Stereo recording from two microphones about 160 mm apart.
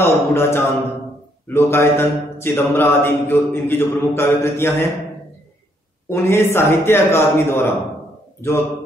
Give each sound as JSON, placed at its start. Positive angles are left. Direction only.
{"t": 0.0, "sound": "mantra", "side_deg": 15}
{"t": 6.0, "sound": "mantra", "side_deg": 15}